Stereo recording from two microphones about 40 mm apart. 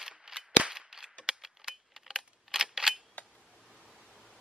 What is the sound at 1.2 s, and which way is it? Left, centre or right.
Camera, centre.